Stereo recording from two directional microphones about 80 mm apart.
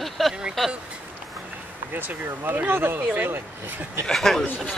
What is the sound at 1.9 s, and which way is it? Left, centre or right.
Speech, right.